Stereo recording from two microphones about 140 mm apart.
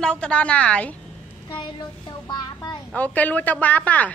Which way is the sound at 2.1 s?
30° left (ahead or behind).